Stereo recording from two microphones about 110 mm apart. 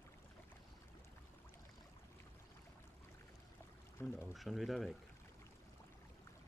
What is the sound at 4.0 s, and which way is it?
Speech, 20° left (ahead or behind).